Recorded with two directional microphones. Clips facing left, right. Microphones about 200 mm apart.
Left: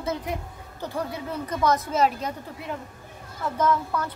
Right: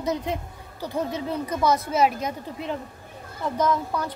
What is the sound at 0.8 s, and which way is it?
Speech, 20° right (ahead or behind).